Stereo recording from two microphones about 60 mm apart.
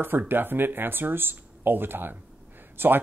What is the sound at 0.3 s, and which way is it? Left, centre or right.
Speech, right.